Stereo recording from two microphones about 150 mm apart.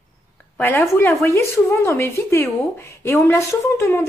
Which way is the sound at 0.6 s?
15° left (ahead or behind).